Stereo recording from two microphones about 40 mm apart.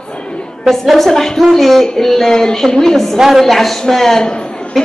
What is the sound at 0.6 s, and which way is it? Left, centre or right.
A man's voice, centre.